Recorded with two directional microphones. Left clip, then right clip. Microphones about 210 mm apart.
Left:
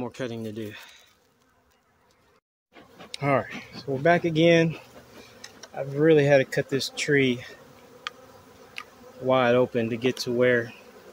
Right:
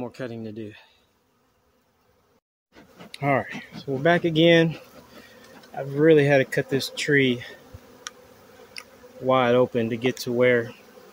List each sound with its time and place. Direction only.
0.0 s speech: centre (ahead or behind)
3.1 s speech: 10° right (ahead or behind)
8.1 s tick: 15° right (ahead or behind)
8.7 s speech: 15° right (ahead or behind)